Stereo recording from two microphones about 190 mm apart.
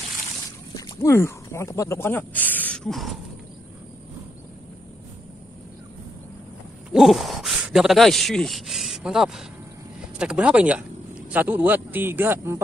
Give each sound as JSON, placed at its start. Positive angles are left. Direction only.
{"t": 0.7, "sound": "speech", "side_deg": 15}
{"t": 6.9, "sound": "speech", "side_deg": 0}